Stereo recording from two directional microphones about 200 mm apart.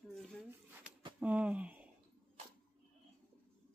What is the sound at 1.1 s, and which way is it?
Speech, 5° right (ahead or behind).